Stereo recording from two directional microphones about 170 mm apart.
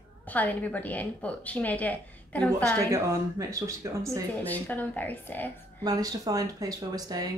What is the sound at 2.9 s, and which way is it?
Speech, 15° right (ahead or behind).